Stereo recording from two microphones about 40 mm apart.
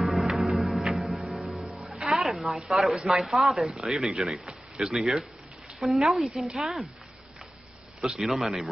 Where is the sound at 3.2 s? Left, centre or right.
Centre.